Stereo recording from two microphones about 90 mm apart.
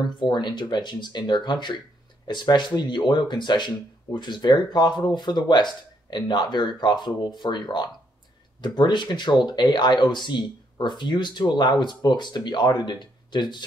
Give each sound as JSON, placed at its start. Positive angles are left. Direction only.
{"t": 0.2, "sound": "speech", "side_deg": 55}